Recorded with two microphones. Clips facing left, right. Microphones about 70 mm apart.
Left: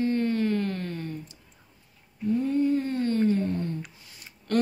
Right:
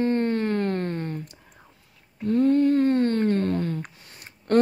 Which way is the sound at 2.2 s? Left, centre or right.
Right.